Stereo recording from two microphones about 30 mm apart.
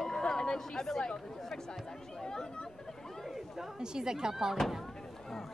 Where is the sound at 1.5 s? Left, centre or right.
Left.